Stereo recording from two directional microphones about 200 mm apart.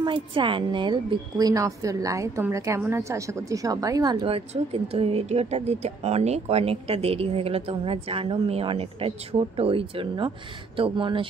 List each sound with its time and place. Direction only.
0.0 s a woman's voice: 25° right (ahead or behind)